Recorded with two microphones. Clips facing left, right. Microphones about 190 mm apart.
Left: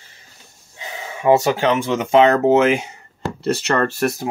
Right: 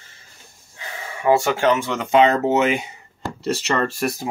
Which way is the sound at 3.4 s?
60° left (ahead or behind).